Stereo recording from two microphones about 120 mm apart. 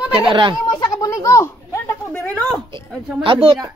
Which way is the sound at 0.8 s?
30° left (ahead or behind).